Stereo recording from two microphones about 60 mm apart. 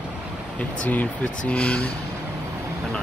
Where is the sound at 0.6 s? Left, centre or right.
Left.